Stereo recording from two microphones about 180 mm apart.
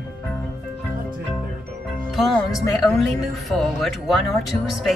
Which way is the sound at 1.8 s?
Centre (ahead or behind).